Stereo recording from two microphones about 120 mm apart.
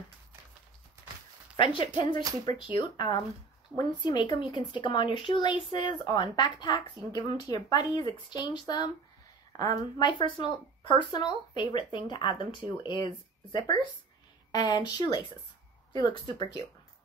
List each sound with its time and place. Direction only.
1.6 s speech: 45° left (ahead or behind)